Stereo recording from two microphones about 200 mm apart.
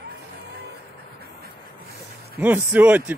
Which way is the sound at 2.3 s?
5° right (ahead or behind).